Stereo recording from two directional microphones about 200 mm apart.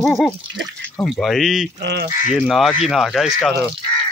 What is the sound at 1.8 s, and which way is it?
Speech, 55° right (ahead or behind).